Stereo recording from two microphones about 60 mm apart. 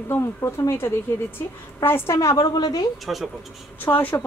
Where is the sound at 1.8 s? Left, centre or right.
Left.